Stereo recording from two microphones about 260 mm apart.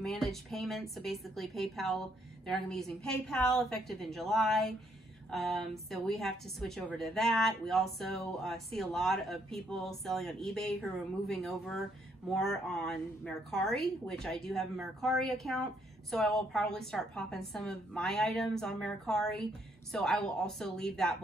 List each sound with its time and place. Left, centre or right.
0.0 s a woman's voice: centre